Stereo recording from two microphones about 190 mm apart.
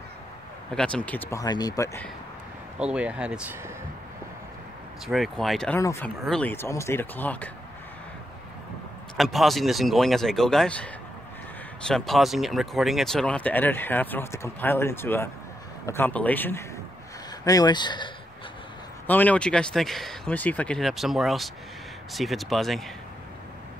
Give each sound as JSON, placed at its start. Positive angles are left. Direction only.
{"t": 0.7, "sound": "speech", "side_deg": 5}
{"t": 2.8, "sound": "speech", "side_deg": -5}
{"t": 5.0, "sound": "speech", "side_deg": 0}
{"t": 5.8, "sound": "speech", "side_deg": 15}
{"t": 9.1, "sound": "speech", "side_deg": 0}
{"t": 17.5, "sound": "speech", "side_deg": 20}
{"t": 19.0, "sound": "speech", "side_deg": 10}